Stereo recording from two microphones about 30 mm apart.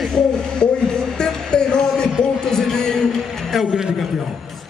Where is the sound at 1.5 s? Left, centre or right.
Left.